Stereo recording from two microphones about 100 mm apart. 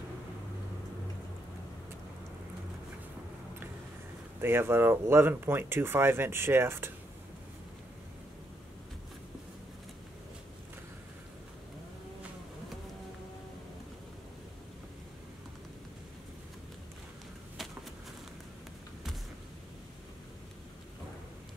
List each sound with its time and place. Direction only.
4.4 s speech: 25° right (ahead or behind)